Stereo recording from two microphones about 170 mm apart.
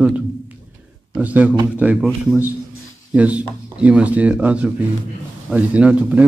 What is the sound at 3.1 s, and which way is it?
Speech, 10° right (ahead or behind).